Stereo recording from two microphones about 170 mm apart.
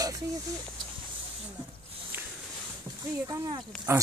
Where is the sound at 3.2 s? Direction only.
20° right (ahead or behind).